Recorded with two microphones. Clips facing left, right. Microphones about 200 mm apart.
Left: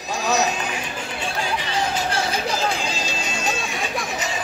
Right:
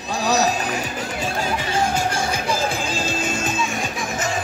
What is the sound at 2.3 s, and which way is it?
Music, 50° right (ahead or behind).